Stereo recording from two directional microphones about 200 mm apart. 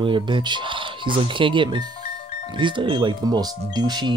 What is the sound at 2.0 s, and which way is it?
Music, 45° left (ahead or behind).